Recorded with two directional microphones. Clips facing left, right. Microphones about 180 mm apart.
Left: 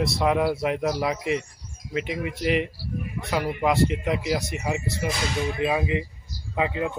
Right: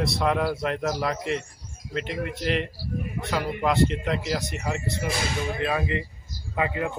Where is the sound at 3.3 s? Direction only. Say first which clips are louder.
Left 2 dB; 10° left (ahead or behind).